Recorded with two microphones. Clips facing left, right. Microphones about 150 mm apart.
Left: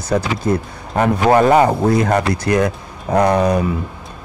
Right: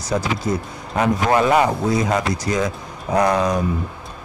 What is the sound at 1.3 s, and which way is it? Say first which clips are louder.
Speech: left 5 dB; 40° left (ahead or behind).